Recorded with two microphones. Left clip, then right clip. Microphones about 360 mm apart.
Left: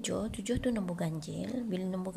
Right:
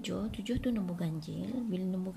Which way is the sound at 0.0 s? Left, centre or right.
Centre.